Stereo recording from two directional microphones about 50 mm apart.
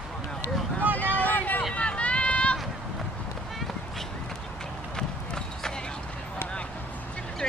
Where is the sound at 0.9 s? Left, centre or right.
Left.